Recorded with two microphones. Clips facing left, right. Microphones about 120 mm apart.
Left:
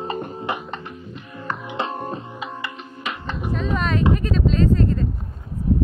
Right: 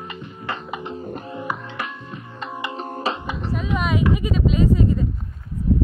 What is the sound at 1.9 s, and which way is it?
Music, 45° left (ahead or behind).